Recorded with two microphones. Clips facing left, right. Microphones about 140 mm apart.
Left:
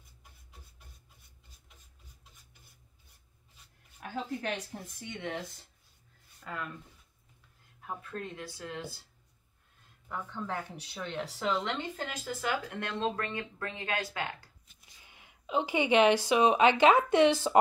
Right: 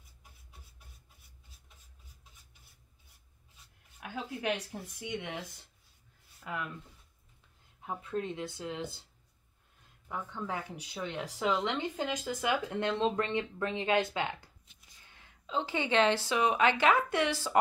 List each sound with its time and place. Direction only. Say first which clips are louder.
0.2 s beatboxing: left 1 dB; 5° right (ahead or behind)
4.0 s a woman's voice: left 1 dB; 10° right (ahead or behind)
6.4 s speech: right 1 dB; 15° right (ahead or behind)
7.8 s speech: right 4 dB; 20° right (ahead or behind)
10.0 s speech: even; 10° right (ahead or behind)
15.0 s a woman's voice: left 2 dB; 15° left (ahead or behind)